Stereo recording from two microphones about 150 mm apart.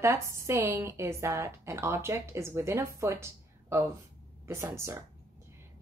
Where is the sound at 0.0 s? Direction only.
20° right (ahead or behind).